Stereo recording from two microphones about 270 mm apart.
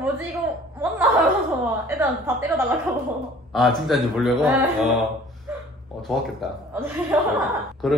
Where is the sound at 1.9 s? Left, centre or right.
Centre.